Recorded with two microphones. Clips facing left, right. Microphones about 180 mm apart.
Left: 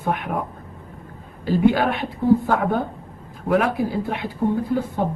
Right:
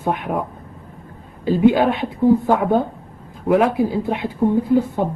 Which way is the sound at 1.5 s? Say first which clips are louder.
Right 3 dB; 15° right (ahead or behind).